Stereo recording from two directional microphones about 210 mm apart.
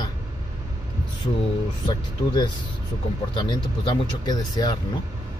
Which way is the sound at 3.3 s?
20° left (ahead or behind).